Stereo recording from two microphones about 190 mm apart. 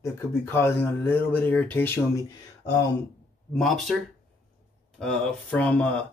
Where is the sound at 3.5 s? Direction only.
Centre (ahead or behind).